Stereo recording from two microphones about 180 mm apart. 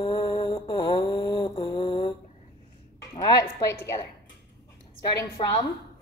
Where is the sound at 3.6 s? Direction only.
15° left (ahead or behind).